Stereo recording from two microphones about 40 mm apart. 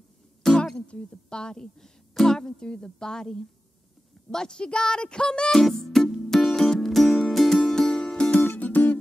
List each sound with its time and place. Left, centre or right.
0.4 s music: centre
0.8 s a woman's voice: left
5.5 s music: centre
7.7 s music: centre
8.5 s music: left